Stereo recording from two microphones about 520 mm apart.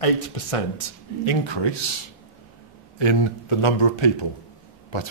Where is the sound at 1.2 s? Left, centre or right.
Left.